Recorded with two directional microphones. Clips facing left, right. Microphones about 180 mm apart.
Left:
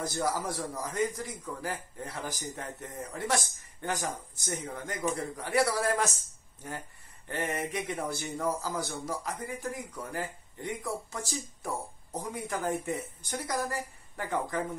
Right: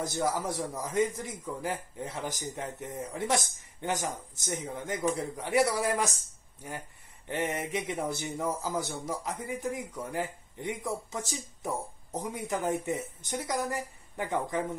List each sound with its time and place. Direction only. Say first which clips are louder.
0.0 s speech: right 1 dB; 20° right (ahead or behind)
7.2 s speech: right 1 dB; 20° right (ahead or behind)